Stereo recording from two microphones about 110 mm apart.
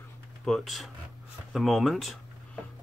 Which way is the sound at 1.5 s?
Centre (ahead or behind).